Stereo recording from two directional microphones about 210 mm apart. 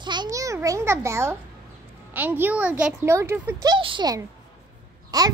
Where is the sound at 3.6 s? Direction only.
20° right (ahead or behind).